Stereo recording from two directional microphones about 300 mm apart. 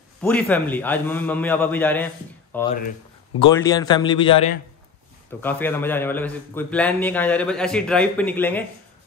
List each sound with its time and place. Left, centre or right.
0.2 s a man's voice: centre
5.4 s a man's voice: centre